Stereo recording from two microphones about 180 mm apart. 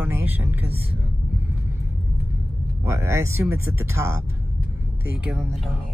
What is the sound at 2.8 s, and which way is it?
Speech, 15° right (ahead or behind).